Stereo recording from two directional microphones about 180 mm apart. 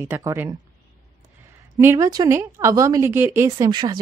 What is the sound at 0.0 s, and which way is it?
Speech, 15° right (ahead or behind).